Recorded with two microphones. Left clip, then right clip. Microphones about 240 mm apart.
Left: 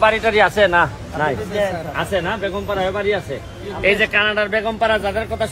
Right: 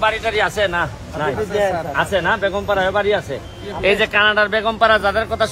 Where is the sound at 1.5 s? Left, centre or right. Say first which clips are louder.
Right 4 dB; right.